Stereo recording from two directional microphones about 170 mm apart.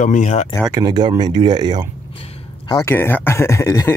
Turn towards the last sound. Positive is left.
turn(degrees=20)  # may be behind; listen again after turning